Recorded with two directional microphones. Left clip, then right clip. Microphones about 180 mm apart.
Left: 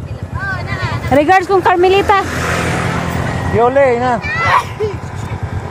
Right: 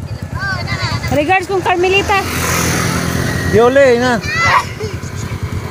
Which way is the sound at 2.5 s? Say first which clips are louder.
Even; 40° right (ahead or behind).